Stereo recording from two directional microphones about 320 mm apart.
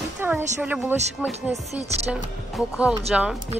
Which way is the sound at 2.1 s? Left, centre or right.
Centre.